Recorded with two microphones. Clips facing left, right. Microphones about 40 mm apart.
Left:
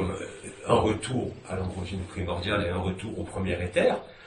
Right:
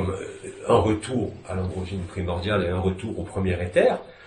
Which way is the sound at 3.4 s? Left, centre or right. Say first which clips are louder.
Right 5 dB; right.